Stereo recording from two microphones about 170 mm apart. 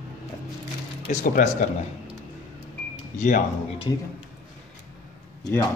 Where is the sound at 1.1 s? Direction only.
45° left (ahead or behind).